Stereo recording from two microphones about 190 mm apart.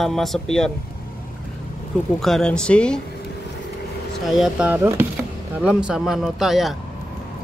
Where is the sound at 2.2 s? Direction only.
5° left (ahead or behind).